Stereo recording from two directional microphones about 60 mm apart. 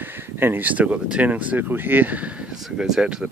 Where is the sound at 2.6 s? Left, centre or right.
Centre.